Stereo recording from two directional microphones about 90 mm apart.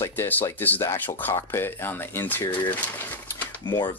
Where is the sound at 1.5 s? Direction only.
25° left (ahead or behind).